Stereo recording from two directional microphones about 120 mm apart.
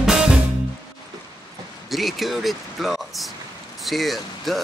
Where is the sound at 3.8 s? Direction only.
Centre (ahead or behind).